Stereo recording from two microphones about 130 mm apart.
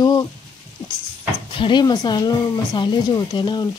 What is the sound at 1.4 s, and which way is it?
Speech, 40° left (ahead or behind).